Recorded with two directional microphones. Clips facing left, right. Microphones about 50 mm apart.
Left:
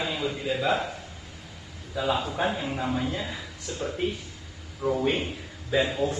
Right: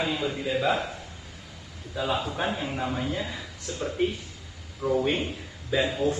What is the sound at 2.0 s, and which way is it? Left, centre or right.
A man's voice, centre.